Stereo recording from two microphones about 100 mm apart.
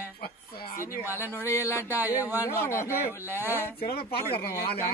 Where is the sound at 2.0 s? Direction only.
20° right (ahead or behind).